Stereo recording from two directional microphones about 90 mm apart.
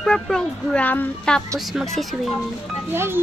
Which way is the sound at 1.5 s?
Centre (ahead or behind).